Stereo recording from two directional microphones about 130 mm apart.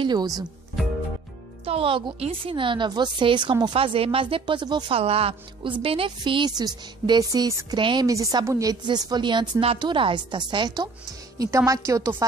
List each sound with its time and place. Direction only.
0.0 s speech: 30° right (ahead or behind)
1.6 s speech: 45° right (ahead or behind)
4.9 s a woman's voice: 50° right (ahead or behind)
11.3 s a woman's voice: 25° right (ahead or behind)